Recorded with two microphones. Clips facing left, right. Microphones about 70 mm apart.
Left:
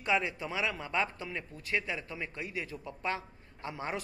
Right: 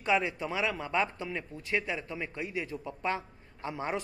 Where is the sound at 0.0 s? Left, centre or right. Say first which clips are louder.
Right 2 dB; centre.